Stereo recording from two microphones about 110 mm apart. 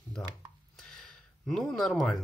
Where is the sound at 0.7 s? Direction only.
5° left (ahead or behind).